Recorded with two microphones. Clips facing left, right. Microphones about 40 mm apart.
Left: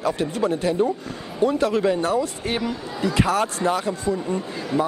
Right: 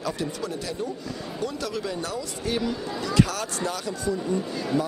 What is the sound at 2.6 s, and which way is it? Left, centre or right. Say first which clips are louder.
Speech: left 3 dB; left.